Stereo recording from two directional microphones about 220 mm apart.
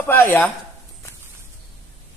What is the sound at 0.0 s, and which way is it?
Speech, 10° left (ahead or behind).